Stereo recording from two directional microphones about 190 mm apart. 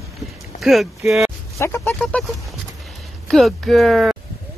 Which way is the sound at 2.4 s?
Centre (ahead or behind).